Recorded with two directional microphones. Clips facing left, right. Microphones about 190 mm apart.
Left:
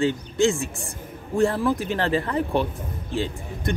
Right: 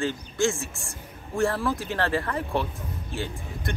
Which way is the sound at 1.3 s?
20° left (ahead or behind).